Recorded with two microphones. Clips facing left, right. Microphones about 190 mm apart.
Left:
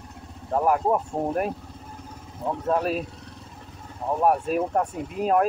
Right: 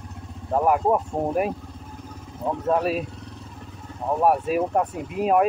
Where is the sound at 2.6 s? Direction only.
Centre (ahead or behind).